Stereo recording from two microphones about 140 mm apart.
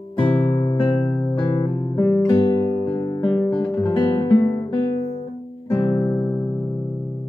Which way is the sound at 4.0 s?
30° left (ahead or behind).